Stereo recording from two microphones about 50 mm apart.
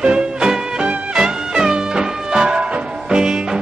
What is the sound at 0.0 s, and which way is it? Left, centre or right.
Music, centre.